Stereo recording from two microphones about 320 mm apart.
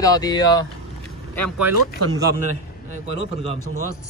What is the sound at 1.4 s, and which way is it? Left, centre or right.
Speech, centre.